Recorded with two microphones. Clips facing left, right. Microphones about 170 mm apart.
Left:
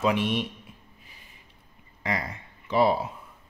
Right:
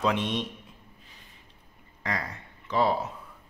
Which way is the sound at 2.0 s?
10° left (ahead or behind).